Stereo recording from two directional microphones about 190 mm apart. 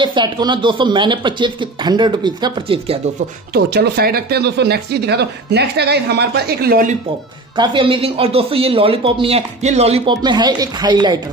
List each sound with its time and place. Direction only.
0.0 s speech: 25° right (ahead or behind)
3.5 s speech: 55° right (ahead or behind)
7.5 s speech: 25° right (ahead or behind)